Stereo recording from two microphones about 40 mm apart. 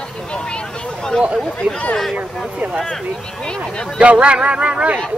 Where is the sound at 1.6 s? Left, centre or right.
Right.